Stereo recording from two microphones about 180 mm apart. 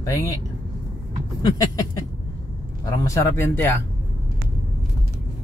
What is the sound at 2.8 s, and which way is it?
Speech, 15° left (ahead or behind).